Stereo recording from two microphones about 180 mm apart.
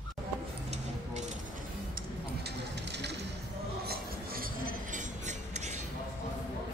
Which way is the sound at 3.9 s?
55° right (ahead or behind).